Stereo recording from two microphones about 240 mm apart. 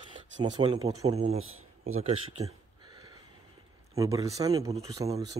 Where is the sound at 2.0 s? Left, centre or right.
Right.